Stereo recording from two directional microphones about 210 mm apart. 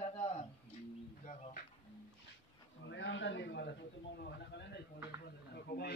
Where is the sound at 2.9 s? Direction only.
60° left (ahead or behind).